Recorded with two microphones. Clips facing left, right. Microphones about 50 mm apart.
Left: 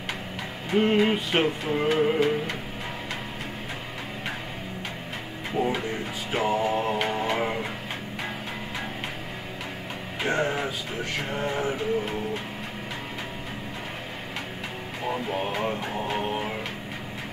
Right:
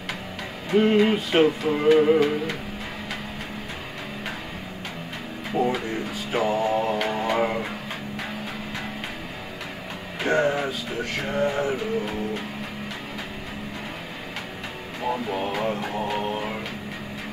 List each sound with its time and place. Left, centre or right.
0.7 s music: centre
6.3 s music: centre
10.2 s music: centre
15.0 s music: centre